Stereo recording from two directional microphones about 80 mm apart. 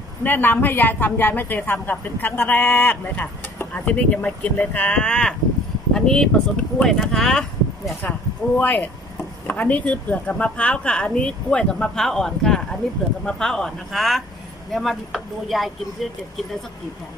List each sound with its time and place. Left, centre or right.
0.2 s a woman's voice: left; by 7.9 s centre
8.5 s a woman's voice: left; by 16.1 s centre